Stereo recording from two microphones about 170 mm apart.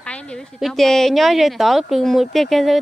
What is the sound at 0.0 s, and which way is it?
A woman's voice, 5° left (ahead or behind).